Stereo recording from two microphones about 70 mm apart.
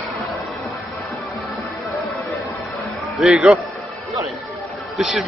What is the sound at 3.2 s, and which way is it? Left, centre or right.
Speech, centre.